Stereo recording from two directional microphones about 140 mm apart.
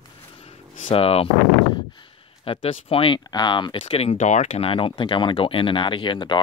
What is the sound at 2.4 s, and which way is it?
Speech, 40° left (ahead or behind).